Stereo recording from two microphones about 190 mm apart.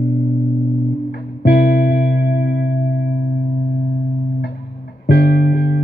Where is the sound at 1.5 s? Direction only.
55° left (ahead or behind).